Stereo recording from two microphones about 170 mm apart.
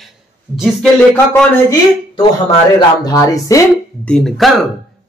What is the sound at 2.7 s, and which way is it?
Speech, 20° left (ahead or behind).